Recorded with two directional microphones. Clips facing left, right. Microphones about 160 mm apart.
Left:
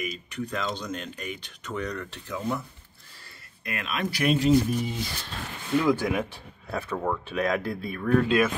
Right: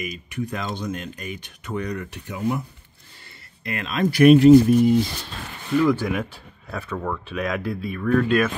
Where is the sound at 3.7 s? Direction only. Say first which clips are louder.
Right 5 dB; 35° right (ahead or behind).